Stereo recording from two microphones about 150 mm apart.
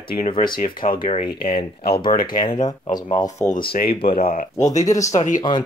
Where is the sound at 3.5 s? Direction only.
75° left (ahead or behind).